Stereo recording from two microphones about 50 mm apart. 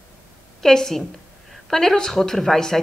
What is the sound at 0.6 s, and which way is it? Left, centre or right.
A woman's voice, centre.